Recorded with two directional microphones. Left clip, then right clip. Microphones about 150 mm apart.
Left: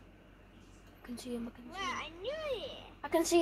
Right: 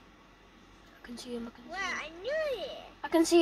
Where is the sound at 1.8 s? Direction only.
5° right (ahead or behind).